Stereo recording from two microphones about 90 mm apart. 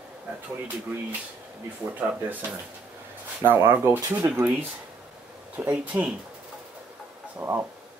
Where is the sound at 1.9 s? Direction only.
20° right (ahead or behind).